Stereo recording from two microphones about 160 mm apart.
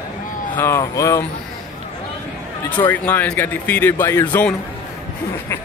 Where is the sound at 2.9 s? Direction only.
10° left (ahead or behind).